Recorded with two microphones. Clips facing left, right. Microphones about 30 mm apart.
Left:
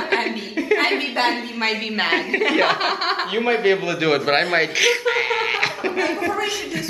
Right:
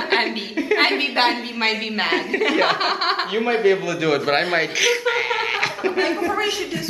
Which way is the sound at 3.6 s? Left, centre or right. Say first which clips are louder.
Even; left.